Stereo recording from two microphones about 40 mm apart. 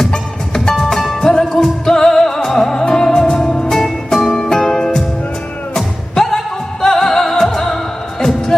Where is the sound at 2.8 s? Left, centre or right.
Left.